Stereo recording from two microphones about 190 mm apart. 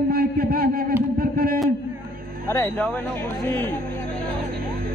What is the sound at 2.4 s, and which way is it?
Speech, 15° left (ahead or behind).